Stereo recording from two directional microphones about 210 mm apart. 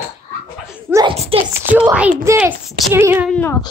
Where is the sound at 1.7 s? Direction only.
5° right (ahead or behind).